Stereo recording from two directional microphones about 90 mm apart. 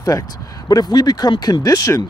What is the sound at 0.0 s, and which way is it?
Speech, 40° left (ahead or behind).